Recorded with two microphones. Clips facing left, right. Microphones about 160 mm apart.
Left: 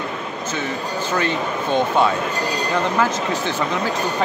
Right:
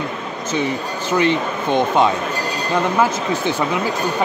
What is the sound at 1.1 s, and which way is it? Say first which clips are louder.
Speech: right 6 dB; 15° right (ahead or behind).